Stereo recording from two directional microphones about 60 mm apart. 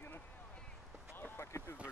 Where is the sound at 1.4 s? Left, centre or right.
Left.